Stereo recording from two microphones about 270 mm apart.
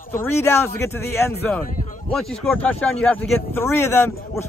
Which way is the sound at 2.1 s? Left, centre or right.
Centre.